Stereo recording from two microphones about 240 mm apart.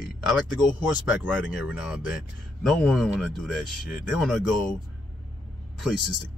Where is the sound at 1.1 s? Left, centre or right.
Centre.